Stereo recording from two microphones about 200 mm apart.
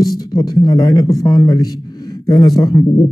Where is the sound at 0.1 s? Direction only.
20° left (ahead or behind).